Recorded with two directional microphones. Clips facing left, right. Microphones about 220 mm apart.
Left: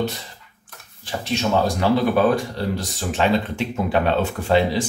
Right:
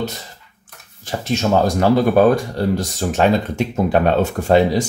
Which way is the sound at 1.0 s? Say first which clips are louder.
Right 3 dB; 45° right (ahead or behind).